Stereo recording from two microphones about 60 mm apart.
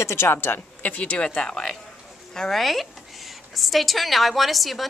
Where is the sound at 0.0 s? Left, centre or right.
Left.